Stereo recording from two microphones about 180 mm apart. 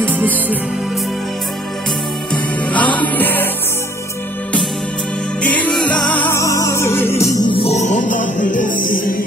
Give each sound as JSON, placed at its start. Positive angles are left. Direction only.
{"t": 0.0, "sound": "music", "side_deg": -10}
{"t": 2.7, "sound": "music", "side_deg": 10}
{"t": 5.4, "sound": "music", "side_deg": 10}